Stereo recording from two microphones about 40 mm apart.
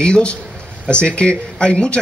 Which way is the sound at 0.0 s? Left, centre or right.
Left.